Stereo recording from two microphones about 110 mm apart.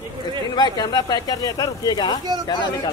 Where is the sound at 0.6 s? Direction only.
40° left (ahead or behind).